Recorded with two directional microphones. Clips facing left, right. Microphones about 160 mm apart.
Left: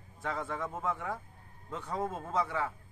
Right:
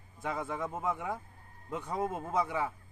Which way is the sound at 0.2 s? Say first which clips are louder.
Right 1 dB; 10° right (ahead or behind).